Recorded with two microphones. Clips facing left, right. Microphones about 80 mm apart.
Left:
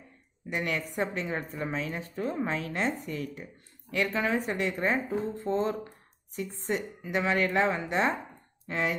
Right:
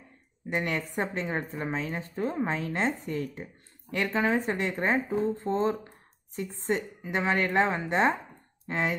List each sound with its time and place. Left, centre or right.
0.5 s a woman's voice: right